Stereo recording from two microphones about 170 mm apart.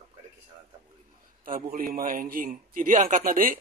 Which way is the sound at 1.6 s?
55° right (ahead or behind).